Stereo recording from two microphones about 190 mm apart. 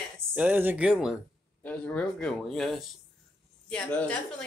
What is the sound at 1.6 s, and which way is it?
Speech, 10° left (ahead or behind).